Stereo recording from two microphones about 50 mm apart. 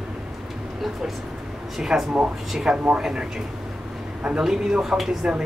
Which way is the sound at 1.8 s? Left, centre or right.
Centre.